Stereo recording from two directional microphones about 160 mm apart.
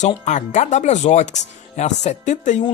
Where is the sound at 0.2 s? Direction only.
45° left (ahead or behind).